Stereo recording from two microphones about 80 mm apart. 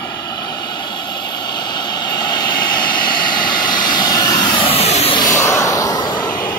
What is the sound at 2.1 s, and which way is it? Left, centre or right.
Vehicle, left.